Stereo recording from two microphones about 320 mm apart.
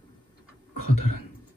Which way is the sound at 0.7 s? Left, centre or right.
Left.